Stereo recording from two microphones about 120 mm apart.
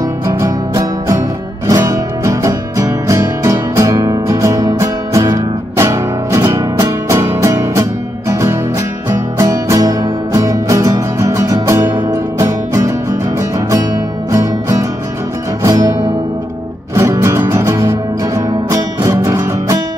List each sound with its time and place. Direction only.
0.3 s music: 25° right (ahead or behind)
16.9 s music: 25° right (ahead or behind)